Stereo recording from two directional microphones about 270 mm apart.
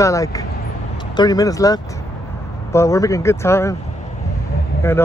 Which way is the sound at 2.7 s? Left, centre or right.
Centre.